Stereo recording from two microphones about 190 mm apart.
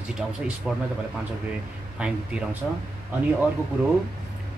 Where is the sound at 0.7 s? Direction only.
5° right (ahead or behind).